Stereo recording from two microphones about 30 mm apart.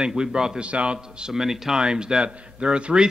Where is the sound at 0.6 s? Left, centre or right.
Right.